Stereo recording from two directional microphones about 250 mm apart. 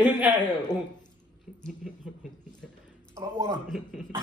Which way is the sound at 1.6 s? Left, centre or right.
Centre.